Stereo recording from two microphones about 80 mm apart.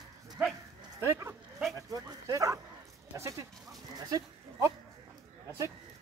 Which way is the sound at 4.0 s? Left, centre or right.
Right.